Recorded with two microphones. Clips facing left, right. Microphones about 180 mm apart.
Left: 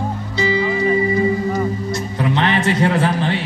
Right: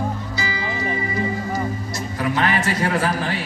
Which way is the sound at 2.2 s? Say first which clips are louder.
Left 2 dB; 25° left (ahead or behind).